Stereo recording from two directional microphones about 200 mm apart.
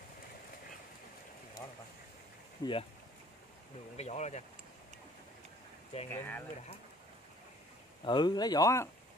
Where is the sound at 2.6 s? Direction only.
20° left (ahead or behind).